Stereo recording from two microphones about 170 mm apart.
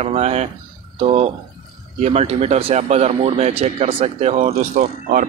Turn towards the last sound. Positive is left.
turn(degrees=-55)  # may be behind; listen again after turning